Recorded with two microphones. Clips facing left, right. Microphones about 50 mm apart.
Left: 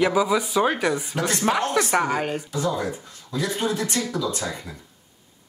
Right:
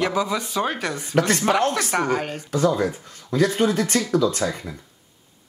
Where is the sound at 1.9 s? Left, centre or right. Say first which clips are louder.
Left 1 dB; centre.